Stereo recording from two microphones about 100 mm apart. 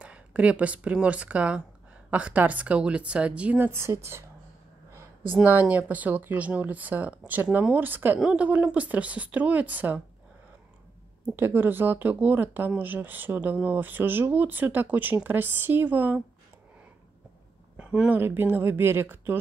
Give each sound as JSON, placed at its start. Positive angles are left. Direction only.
{"t": 0.0, "sound": "speech", "side_deg": -15}
{"t": 11.3, "sound": "speech", "side_deg": -20}
{"t": 17.7, "sound": "speech", "side_deg": -15}